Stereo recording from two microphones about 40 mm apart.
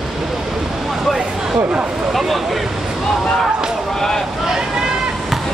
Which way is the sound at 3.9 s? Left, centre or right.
Centre.